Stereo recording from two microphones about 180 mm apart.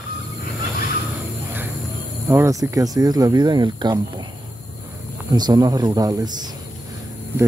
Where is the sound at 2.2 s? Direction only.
15° right (ahead or behind).